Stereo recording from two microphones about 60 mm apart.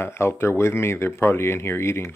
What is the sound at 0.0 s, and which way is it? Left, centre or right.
Speech, left.